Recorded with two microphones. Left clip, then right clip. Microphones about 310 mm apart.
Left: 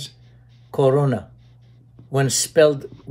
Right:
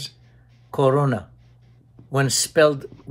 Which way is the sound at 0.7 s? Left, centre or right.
Centre.